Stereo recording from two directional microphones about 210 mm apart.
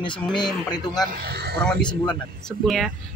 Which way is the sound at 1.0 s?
45° right (ahead or behind).